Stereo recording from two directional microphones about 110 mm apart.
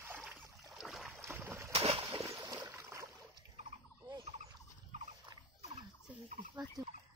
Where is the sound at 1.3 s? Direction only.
20° right (ahead or behind).